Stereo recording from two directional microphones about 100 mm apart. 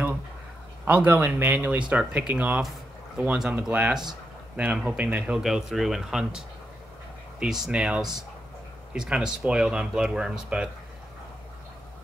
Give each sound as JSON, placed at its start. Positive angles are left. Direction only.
{"t": 0.8, "sound": "speech", "side_deg": -15}